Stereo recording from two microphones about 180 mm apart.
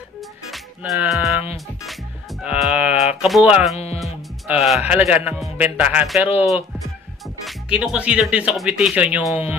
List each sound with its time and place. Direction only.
0.5 s speech: centre (ahead or behind)
2.4 s music: 5° right (ahead or behind)
3.7 s speech: 35° left (ahead or behind)
4.0 s speech: centre (ahead or behind)